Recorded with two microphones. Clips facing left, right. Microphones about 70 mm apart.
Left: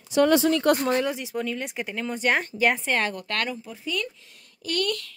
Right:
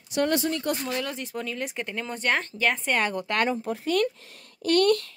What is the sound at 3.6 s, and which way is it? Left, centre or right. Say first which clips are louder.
A woman's voice: right 7 dB; right.